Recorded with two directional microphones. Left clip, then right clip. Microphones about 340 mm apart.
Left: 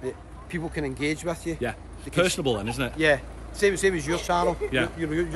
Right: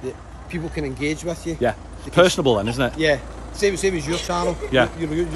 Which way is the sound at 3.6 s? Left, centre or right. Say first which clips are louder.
Right 2 dB; centre.